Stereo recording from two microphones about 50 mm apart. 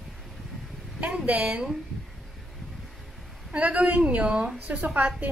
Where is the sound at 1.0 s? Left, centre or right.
Right.